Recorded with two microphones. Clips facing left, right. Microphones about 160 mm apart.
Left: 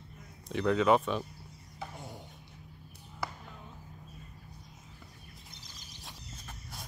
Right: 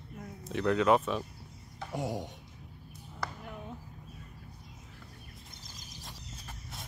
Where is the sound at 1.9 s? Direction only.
80° right.